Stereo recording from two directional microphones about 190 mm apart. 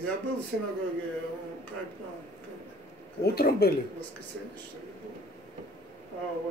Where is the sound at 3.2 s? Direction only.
55° left (ahead or behind).